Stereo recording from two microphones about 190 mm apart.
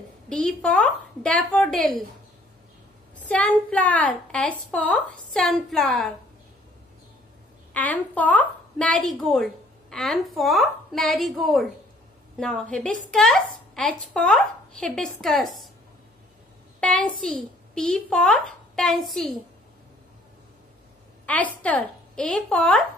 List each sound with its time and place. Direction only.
0.3 s a woman's voice: 5° left (ahead or behind)
3.2 s a woman's voice: 5° left (ahead or behind)
7.7 s a woman's voice: 10° left (ahead or behind)
16.8 s a woman's voice: 5° left (ahead or behind)
21.3 s a woman's voice: 10° left (ahead or behind)